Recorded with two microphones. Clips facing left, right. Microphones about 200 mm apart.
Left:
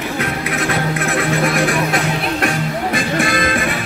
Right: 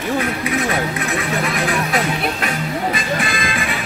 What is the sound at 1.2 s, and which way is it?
Music, 55° left (ahead or behind).